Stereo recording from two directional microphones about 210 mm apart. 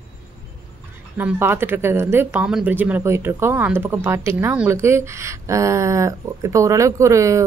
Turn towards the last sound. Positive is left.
turn(degrees=-15)  # may be behind; listen again after turning